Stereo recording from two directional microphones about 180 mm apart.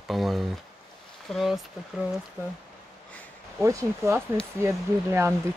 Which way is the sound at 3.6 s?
15° right (ahead or behind).